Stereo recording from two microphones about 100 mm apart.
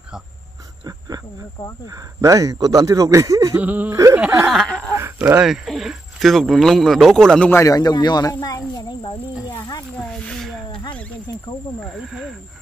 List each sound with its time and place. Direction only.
0.8 s wild animals: 40° right (ahead or behind)
1.9 s speech: 35° right (ahead or behind)
3.5 s speech: 15° right (ahead or behind)
3.9 s speech: 30° right (ahead or behind)
4.5 s speech: 5° left (ahead or behind)
4.9 s a sound: 30° right (ahead or behind)
5.4 s speech: centre (ahead or behind)
7.5 s speech: 35° left (ahead or behind)
9.6 s wild animals: 40° left (ahead or behind)
10.3 s a sound: 5° left (ahead or behind)
10.7 s a sound: 55° left (ahead or behind)
11.8 s speech: centre (ahead or behind)